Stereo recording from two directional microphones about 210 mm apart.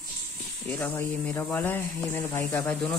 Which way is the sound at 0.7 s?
10° left (ahead or behind).